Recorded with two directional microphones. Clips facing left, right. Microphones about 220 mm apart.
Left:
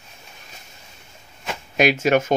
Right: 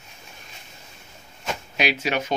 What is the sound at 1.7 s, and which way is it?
Speech, 45° left (ahead or behind).